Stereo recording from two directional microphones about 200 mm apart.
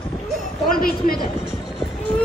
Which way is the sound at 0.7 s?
45° left (ahead or behind).